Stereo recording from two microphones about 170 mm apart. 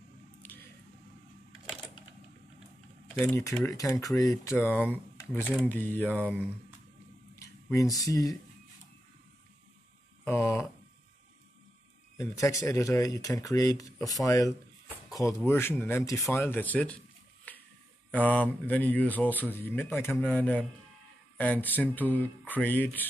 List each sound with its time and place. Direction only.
0.4 s squish: 10° left (ahead or behind)
3.2 s speech: 10° left (ahead or behind)
7.7 s speech: 20° left (ahead or behind)
10.2 s speech: 15° left (ahead or behind)
12.2 s speech: 20° left (ahead or behind)
18.1 s speech: 10° left (ahead or behind)